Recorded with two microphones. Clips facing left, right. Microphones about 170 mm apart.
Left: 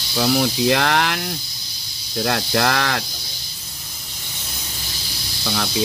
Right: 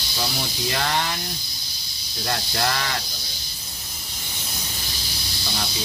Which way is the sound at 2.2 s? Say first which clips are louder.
Left 6 dB; 75° left (ahead or behind).